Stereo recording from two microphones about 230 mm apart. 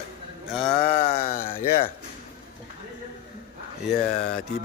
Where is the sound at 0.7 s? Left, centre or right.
Left.